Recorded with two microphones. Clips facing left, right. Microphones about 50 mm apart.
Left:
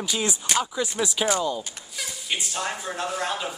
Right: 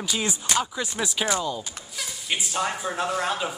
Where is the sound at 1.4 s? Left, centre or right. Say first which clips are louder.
Left 2 dB; centre.